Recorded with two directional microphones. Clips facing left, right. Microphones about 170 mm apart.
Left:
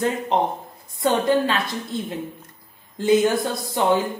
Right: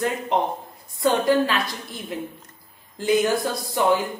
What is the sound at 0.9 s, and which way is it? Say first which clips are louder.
A woman's voice: even; 25° left (ahead or behind).